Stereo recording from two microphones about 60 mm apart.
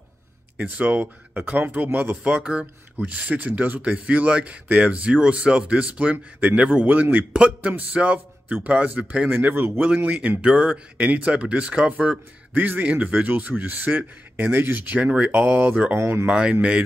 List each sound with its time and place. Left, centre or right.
0.6 s speech: right
2.2 s speech: centre
9.3 s speech: right
10.0 s speech: right
16.0 s speech: right
16.3 s speech: centre